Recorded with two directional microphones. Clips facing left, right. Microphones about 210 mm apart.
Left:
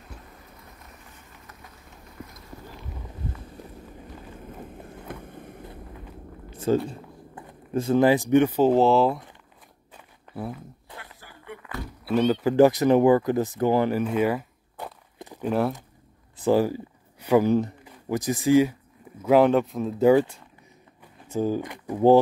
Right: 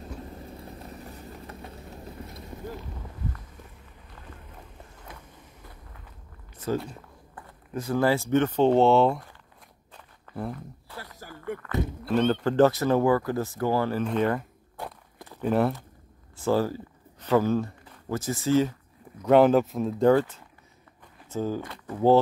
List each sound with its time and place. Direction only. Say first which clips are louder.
0.4 s vehicle: right 8 dB; 30° right (ahead or behind)
4.9 s vehicle: left 9 dB; 60° left (ahead or behind)
6.5 s a sound: left 6 dB; 30° left (ahead or behind)
7.3 s speech: left 7 dB; 25° left (ahead or behind); by 9.2 s centre (ahead or behind)
9.9 s walk: even; 5° left (ahead or behind)
11.1 s a sound: right 11 dB; 45° right (ahead or behind)
12.0 s speech: left 3 dB; 10° left (ahead or behind)
14.0 s a sound: left 2 dB; 5° left (ahead or behind)
15.1 s a sound: left 4 dB; 15° left (ahead or behind)
15.4 s speech: right 1 dB; centre (ahead or behind)
16.3 s speech: left 3 dB; 15° left (ahead or behind)
19.2 s speech: even; centre (ahead or behind)